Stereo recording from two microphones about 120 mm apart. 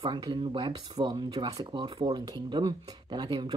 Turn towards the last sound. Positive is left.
turn(degrees=-40)  # may be behind; listen again after turning